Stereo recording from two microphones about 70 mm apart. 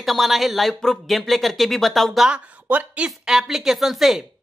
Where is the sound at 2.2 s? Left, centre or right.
Centre.